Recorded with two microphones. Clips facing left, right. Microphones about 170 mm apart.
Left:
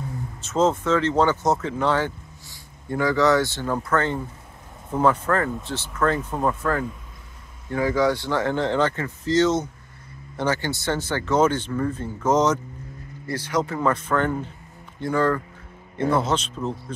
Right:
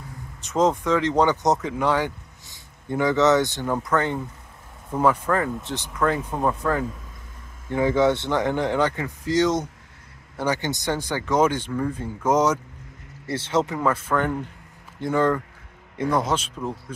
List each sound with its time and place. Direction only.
0.4 s speech: 15° right (ahead or behind)
13.3 s speech: 25° right (ahead or behind)
13.7 s speech: 10° right (ahead or behind)